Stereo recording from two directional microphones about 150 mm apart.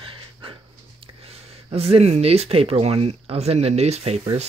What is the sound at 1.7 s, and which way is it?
Speech, 40° right (ahead or behind).